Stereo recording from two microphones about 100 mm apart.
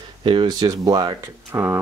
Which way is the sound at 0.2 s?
55° right (ahead or behind).